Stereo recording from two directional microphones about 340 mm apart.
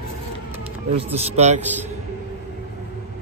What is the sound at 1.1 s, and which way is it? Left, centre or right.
Speech, centre.